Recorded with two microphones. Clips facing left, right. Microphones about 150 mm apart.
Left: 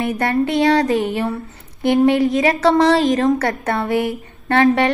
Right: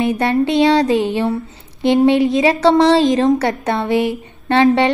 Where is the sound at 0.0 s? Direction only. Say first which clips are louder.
Right 3 dB; 20° right (ahead or behind).